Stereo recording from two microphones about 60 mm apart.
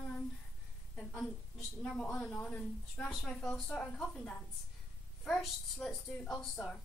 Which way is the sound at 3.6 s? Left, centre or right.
Centre.